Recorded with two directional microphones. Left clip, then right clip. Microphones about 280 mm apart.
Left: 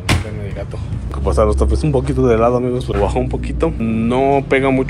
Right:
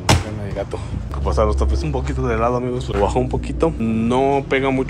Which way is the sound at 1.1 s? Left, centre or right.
Centre.